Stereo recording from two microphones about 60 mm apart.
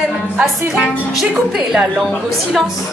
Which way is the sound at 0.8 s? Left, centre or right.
Centre.